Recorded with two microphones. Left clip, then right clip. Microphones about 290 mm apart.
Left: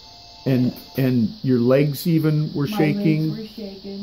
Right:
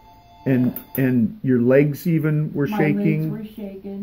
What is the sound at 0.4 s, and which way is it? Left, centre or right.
Speech, left.